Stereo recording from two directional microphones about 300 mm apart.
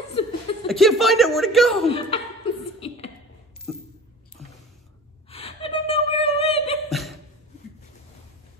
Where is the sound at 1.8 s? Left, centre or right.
Centre.